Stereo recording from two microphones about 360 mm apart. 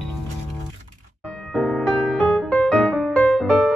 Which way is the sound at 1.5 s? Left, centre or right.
Centre.